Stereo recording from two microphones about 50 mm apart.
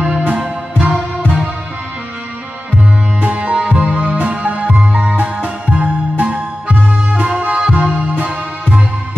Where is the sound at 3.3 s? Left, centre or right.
Right.